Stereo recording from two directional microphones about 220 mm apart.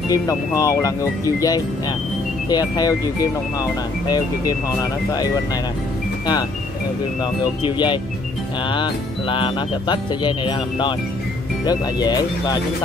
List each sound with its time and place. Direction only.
0.1 s speech: 15° left (ahead or behind)
7.4 s speech: 20° left (ahead or behind)